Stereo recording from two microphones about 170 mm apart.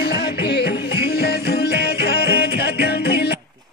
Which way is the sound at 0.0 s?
75° left (ahead or behind).